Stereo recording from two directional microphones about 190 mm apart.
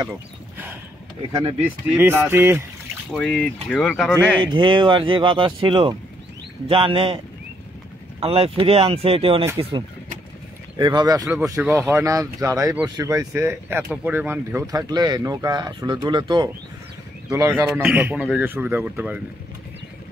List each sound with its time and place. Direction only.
1.6 s speech: 10° right (ahead or behind)
3.1 s speech: centre (ahead or behind)
4.6 s speech: 25° right (ahead or behind)
8.2 s speech: 30° right (ahead or behind)
17.3 s speech: 10° right (ahead or behind)